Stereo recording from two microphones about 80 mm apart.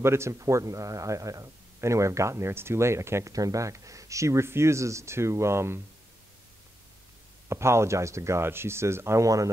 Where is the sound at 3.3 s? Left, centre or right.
Right.